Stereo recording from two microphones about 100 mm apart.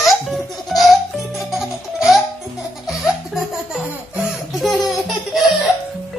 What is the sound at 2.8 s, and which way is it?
Laughter, 5° right (ahead or behind).